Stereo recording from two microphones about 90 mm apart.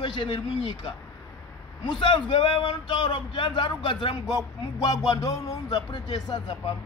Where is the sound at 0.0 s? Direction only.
60° left (ahead or behind).